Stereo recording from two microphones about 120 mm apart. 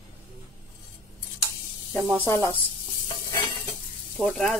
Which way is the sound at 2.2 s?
20° left (ahead or behind).